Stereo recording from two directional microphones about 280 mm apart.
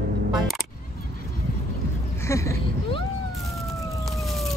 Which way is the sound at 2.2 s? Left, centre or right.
Centre.